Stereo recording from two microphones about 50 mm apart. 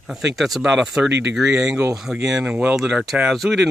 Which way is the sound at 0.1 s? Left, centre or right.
Centre.